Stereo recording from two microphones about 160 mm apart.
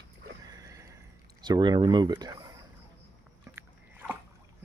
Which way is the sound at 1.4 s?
25° right (ahead or behind).